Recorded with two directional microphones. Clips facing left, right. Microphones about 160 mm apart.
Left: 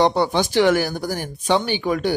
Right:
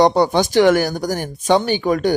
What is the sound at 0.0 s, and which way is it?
Speech, 45° right (ahead or behind).